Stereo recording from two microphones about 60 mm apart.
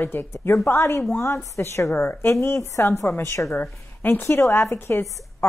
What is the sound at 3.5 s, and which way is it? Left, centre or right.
Speech, left.